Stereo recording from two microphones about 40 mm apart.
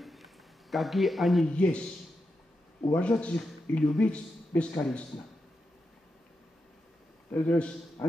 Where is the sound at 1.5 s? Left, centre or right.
Left.